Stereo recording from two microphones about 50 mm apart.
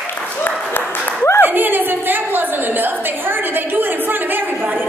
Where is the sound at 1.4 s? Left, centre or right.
Right.